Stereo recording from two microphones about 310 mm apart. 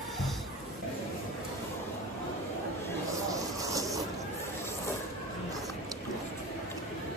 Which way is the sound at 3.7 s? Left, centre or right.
Centre.